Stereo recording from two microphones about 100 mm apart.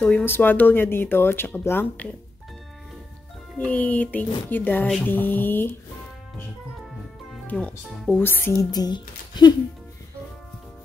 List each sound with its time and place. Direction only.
0.0 s speech: 15° left (ahead or behind)
3.5 s speech: 15° left (ahead or behind)
7.4 s speech: 10° left (ahead or behind)
8.2 s speech: 20° left (ahead or behind)
8.5 s speech: 40° left (ahead or behind)